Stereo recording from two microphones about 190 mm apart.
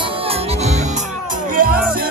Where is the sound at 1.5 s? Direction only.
45° right (ahead or behind).